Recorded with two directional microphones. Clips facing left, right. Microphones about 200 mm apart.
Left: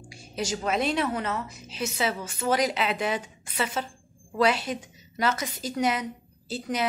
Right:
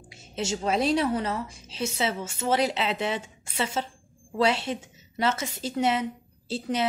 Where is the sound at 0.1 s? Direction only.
25° right (ahead or behind).